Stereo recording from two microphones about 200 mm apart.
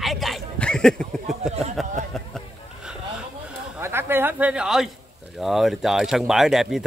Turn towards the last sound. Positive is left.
turn(degrees=0)  # may be behind; listen again after turning